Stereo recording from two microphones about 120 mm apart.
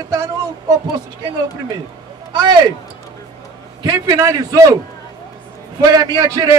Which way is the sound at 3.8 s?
25° right (ahead or behind).